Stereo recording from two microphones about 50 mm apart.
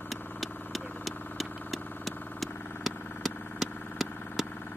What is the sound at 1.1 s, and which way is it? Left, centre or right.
Vehicle, left.